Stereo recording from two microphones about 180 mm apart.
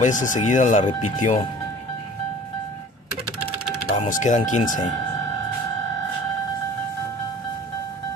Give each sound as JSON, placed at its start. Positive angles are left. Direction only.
{"t": 0.0, "sound": "speech", "side_deg": 45}
{"t": 3.9, "sound": "speech", "side_deg": 40}